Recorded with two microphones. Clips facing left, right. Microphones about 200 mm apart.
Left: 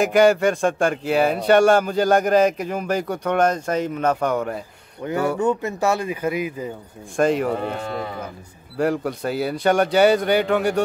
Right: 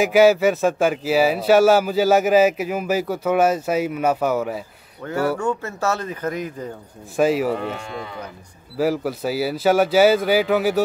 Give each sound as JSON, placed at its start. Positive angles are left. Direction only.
{"t": 0.0, "sound": "speech", "side_deg": -5}
{"t": 5.4, "sound": "speech", "side_deg": 20}
{"t": 7.2, "sound": "speech", "side_deg": -5}
{"t": 7.6, "sound": "speech", "side_deg": 40}
{"t": 8.7, "sound": "speech", "side_deg": -5}